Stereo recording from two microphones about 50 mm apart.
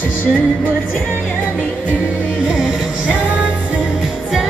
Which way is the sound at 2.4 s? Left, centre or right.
Centre.